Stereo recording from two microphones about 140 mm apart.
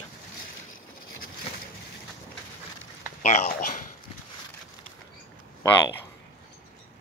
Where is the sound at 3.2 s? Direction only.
60° left (ahead or behind).